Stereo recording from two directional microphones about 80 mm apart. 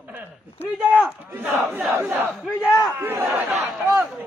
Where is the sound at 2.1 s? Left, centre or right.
Right.